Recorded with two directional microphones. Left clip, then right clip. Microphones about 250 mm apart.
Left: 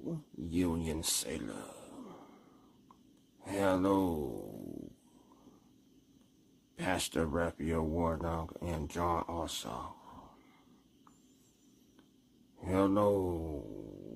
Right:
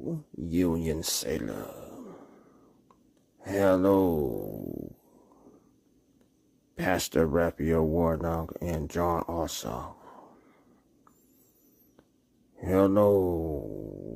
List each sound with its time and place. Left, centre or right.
0.0 s speech: centre
3.3 s speech: right
6.7 s speech: right
12.5 s speech: right